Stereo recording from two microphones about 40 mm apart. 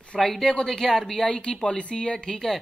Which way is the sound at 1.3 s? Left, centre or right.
Left.